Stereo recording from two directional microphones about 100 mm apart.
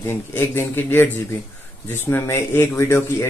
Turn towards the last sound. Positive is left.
turn(degrees=25)  # may be behind; listen again after turning